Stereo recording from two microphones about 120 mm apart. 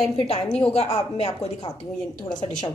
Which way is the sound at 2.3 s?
40° left (ahead or behind).